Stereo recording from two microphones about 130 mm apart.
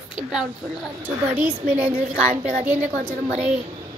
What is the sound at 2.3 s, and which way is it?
Speech, 65° right (ahead or behind).